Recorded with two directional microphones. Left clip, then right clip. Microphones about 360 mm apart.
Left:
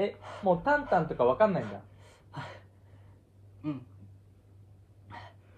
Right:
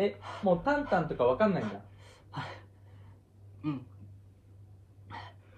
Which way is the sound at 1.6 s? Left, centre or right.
Centre.